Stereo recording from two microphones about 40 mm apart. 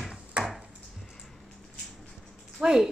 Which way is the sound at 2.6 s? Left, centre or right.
Centre.